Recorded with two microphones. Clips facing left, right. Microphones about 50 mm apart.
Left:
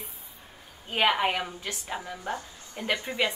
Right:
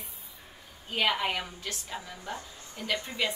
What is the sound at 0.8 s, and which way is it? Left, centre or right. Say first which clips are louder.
A woman's voice: left 4 dB; left.